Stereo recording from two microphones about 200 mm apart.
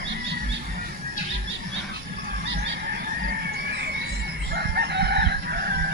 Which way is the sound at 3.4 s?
55° right (ahead or behind).